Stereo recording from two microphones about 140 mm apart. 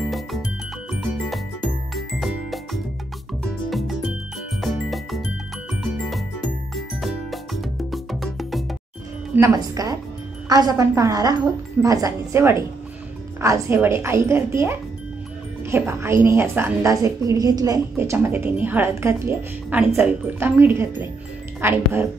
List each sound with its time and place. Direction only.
0.9 s music: centre (ahead or behind)
9.3 s a woman's voice: 20° right (ahead or behind)